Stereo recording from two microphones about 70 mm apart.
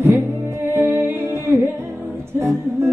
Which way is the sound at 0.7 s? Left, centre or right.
Right.